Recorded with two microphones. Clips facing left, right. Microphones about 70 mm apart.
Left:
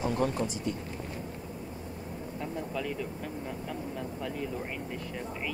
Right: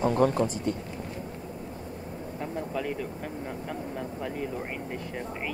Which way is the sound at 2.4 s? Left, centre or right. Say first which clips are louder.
Right 3 dB; right.